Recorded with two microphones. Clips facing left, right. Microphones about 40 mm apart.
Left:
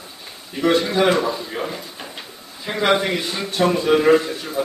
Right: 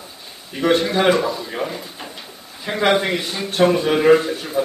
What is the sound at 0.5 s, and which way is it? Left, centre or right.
Speech, centre.